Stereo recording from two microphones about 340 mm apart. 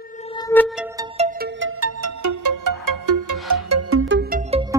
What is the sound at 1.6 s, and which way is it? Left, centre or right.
Music, right.